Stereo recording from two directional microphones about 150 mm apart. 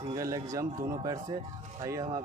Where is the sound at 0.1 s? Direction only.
20° right (ahead or behind).